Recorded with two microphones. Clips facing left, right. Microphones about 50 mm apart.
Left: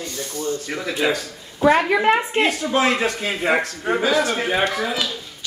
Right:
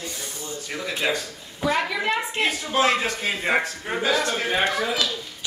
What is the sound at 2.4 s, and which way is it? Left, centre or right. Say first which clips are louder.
A man's voice: left 3 dB; left.